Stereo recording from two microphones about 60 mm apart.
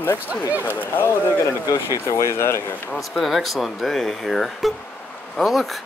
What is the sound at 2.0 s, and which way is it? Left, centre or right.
Speech, left.